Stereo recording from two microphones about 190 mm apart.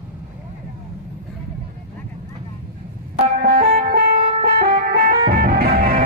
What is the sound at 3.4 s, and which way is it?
Music, 50° right (ahead or behind).